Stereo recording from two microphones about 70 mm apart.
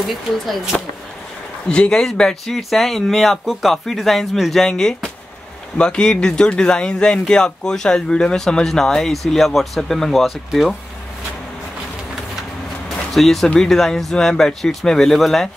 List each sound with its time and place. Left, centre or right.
0.7 s speech: centre
13.1 s speech: centre